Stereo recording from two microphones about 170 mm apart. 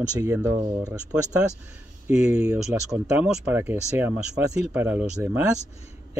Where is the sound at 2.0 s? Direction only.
5° right (ahead or behind).